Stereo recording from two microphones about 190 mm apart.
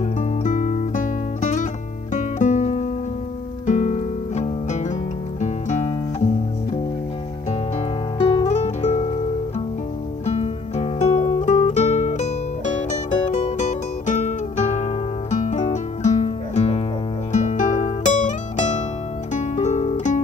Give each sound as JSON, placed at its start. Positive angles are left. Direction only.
{"t": 0.2, "sound": "music", "side_deg": 40}
{"t": 8.2, "sound": "music", "side_deg": 30}
{"t": 10.2, "sound": "music", "side_deg": 35}